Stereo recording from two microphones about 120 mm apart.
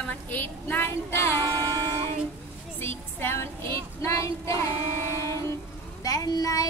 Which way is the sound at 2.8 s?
20° left (ahead or behind).